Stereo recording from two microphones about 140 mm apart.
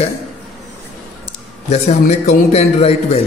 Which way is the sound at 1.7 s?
50° left (ahead or behind).